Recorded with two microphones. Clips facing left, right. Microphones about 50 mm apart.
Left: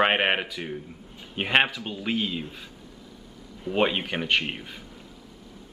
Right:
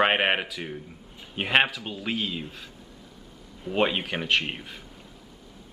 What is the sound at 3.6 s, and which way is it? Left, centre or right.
Speech, centre.